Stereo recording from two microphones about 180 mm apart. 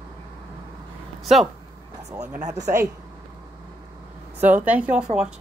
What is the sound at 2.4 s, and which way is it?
Speech, 40° right (ahead or behind).